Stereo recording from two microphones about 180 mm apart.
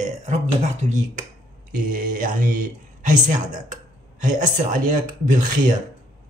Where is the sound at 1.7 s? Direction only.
50° right (ahead or behind).